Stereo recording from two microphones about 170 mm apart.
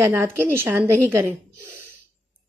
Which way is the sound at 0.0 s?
10° right (ahead or behind).